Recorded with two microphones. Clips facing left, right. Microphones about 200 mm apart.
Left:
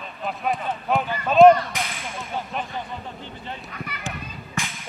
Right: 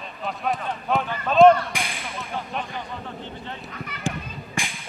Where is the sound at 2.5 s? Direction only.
Centre (ahead or behind).